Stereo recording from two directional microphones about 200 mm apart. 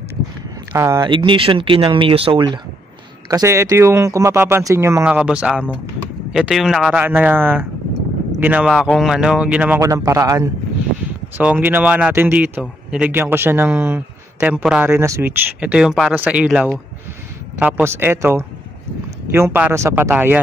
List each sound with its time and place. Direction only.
0.7 s a man's voice: 15° right (ahead or behind)